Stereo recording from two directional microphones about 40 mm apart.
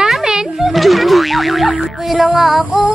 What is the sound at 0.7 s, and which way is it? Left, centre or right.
Boing, centre.